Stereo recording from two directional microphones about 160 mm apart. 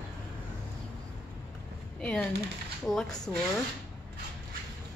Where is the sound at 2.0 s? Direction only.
5° left (ahead or behind).